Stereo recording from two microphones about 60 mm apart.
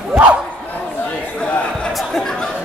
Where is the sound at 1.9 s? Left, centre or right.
Centre.